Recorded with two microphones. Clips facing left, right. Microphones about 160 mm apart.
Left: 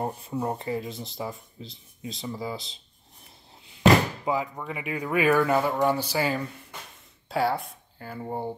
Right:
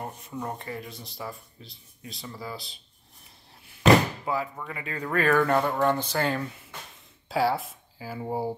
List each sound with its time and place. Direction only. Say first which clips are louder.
0.0 s speech: left 6 dB; 30° left (ahead or behind)
4.2 s speech: left 2 dB; 15° left (ahead or behind); by 8.5 s 5° right (ahead or behind)